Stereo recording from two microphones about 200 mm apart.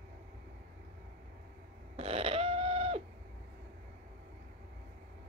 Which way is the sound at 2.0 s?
30° right (ahead or behind).